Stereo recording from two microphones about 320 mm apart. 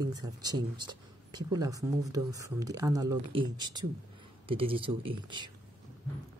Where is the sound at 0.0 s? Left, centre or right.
Centre.